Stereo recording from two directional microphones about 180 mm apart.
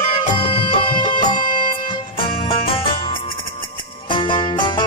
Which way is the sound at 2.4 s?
30° left (ahead or behind).